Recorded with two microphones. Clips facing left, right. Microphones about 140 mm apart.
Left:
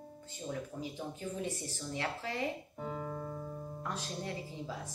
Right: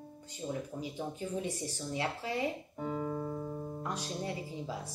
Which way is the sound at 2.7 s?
Centre (ahead or behind).